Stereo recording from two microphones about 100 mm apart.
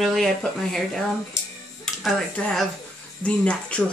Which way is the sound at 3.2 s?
10° left (ahead or behind).